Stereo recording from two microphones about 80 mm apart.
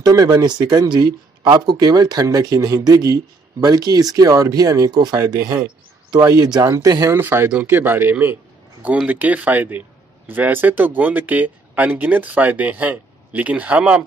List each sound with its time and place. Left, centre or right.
0.0 s speech: right
7.2 s speech: right